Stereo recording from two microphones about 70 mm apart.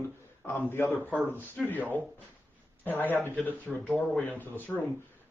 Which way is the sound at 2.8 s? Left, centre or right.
Left.